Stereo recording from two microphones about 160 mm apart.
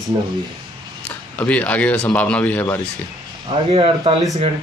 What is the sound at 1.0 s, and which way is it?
Speech, 10° left (ahead or behind).